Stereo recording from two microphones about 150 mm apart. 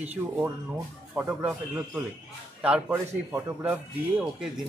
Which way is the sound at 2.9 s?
15° right (ahead or behind).